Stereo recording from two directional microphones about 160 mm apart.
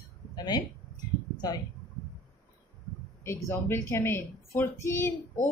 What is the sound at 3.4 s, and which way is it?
Speech, 15° left (ahead or behind).